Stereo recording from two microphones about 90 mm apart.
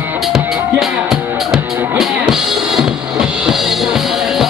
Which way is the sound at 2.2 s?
5° right (ahead or behind).